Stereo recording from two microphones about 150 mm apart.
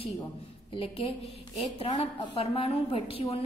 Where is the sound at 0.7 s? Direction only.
40° left (ahead or behind).